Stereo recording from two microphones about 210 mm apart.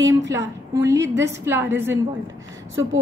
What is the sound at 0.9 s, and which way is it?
Speech, 60° right (ahead or behind).